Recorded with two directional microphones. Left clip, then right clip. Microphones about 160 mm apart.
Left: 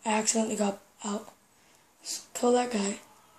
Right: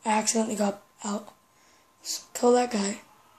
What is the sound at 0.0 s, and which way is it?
Speech, 20° right (ahead or behind).